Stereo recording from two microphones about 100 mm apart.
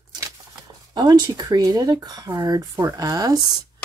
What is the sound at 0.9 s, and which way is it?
Speech, 45° right (ahead or behind).